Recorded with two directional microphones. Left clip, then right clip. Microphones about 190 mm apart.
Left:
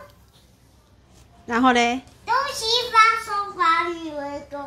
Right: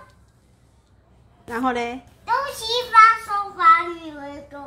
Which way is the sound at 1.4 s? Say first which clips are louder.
Left 6 dB; 15° left (ahead or behind).